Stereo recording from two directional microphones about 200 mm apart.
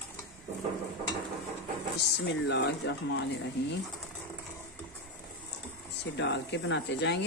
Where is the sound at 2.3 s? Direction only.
60° left (ahead or behind).